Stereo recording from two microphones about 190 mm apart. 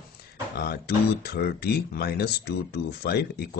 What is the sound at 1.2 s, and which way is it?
Speech, 55° left (ahead or behind).